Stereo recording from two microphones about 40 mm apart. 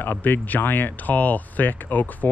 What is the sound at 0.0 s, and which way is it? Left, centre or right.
Speech, left.